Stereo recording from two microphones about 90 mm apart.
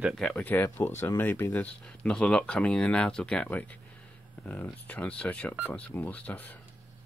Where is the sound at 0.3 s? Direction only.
20° left (ahead or behind).